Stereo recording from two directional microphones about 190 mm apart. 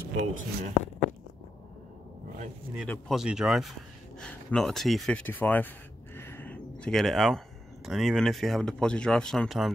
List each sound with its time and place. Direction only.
0.3 s speech: 45° right (ahead or behind)
2.9 s speech: centre (ahead or behind)